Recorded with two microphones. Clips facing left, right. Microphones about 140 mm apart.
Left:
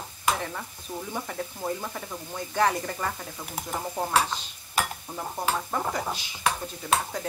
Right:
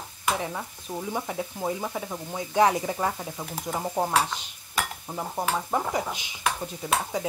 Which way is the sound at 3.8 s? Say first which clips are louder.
Right 4 dB; 20° right (ahead or behind).